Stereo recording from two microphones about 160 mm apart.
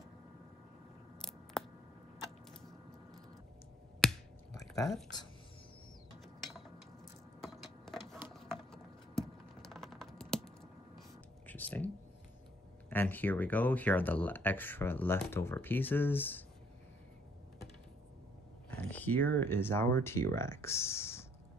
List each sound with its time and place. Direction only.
1.2 s scissors: 5° left (ahead or behind)
4.0 s a sound: centre (ahead or behind)
4.6 s a sound: 20° left (ahead or behind)
6.1 s mechanisms: centre (ahead or behind)
7.4 s a sound: centre (ahead or behind)
8.3 s typing: centre (ahead or behind)
11.4 s whispering: 10° left (ahead or behind)
12.9 s speech: 10° left (ahead or behind)
18.7 s speech: 10° left (ahead or behind)